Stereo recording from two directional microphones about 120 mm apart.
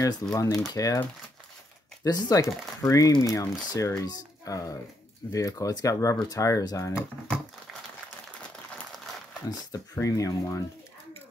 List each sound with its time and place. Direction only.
0.0 s speech: 30° left (ahead or behind)
2.0 s speech: 35° left (ahead or behind)
9.9 s speech: 25° left (ahead or behind)